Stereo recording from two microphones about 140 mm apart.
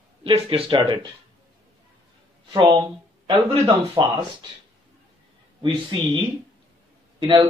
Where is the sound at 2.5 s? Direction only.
35° right (ahead or behind).